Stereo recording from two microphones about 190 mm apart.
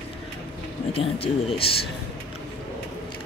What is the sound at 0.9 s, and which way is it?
Speech, 30° left (ahead or behind).